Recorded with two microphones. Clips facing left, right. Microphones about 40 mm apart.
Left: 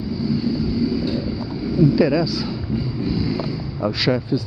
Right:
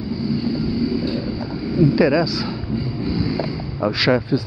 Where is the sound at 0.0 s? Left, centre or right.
Centre.